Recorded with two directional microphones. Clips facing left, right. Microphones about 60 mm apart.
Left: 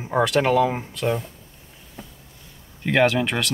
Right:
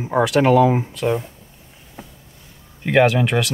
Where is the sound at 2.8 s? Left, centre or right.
Centre.